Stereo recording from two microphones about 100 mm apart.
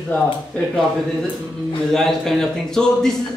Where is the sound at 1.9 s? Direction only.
5° left (ahead or behind).